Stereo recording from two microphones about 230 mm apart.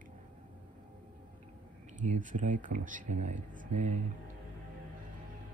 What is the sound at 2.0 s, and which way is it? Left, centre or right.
Speech, right.